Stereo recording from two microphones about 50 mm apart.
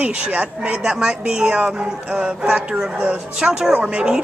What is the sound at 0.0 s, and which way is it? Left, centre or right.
Speech, right.